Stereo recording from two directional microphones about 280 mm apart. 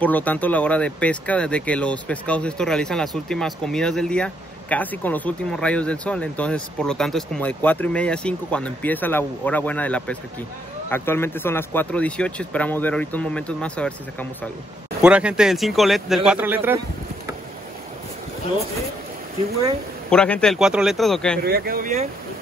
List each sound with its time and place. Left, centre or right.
0.0 s speech: centre
15.0 s speech: centre
20.1 s speech: centre
21.4 s speech: right